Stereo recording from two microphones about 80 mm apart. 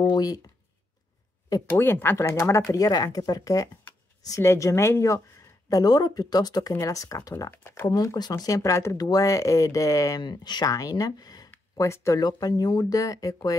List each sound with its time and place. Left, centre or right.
0.1 s speech: left
1.8 s speech: left
2.1 s speech: left
5.7 s speech: left
6.8 s speech: left
7.5 s speech: left
7.9 s speech: left
10.2 s speech: left
12.2 s speech: left